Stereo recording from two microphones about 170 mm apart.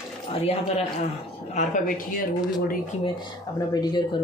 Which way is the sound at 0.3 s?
35° left (ahead or behind).